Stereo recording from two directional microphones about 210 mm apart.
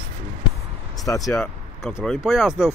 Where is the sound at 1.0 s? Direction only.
15° left (ahead or behind).